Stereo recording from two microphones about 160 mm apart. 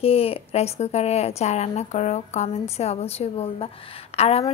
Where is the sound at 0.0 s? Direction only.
35° left (ahead or behind).